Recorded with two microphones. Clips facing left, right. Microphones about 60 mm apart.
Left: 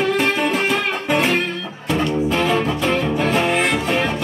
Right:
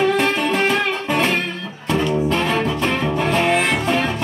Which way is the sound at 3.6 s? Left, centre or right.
Right.